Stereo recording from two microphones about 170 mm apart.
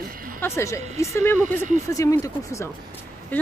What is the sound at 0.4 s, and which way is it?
Speech, 15° left (ahead or behind).